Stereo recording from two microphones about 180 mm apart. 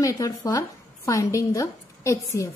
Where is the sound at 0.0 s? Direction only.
20° left (ahead or behind).